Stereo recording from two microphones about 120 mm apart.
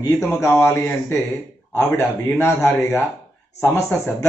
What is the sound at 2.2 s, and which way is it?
A man's voice, 20° left (ahead or behind).